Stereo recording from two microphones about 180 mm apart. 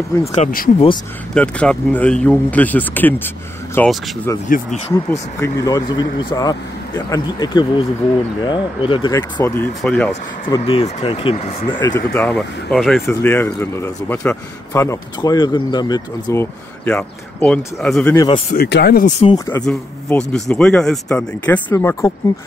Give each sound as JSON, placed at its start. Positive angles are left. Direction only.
{"t": 0.2, "sound": "speech", "side_deg": 40}
{"t": 1.3, "sound": "speech", "side_deg": 5}
{"t": 4.9, "sound": "speech", "side_deg": 15}
{"t": 10.6, "sound": "speech", "side_deg": 30}
{"t": 11.9, "sound": "speech", "side_deg": 15}
{"t": 13.0, "sound": "speech", "side_deg": 10}
{"t": 16.8, "sound": "speech", "side_deg": 5}
{"t": 18.1, "sound": "speech", "side_deg": 25}
{"t": 18.5, "sound": "speech", "side_deg": 65}
{"t": 19.0, "sound": "speech", "side_deg": 40}
{"t": 19.3, "sound": "speech", "side_deg": 20}
{"t": 19.6, "sound": "speech", "side_deg": 5}